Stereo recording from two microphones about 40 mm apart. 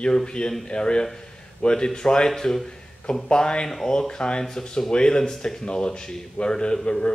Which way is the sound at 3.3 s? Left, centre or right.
Left.